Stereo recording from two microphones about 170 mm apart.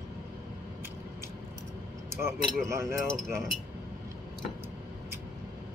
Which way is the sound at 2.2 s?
15° right (ahead or behind).